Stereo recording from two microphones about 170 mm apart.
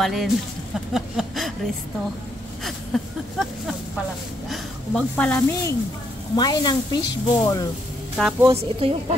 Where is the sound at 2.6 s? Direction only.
Centre (ahead or behind).